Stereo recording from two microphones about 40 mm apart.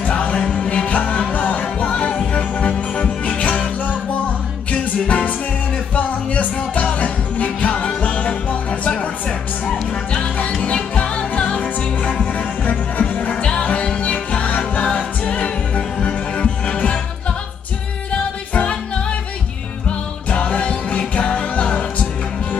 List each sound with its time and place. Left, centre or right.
0.1 s music: left
10.1 s music: left
18.5 s music: left
20.2 s music: left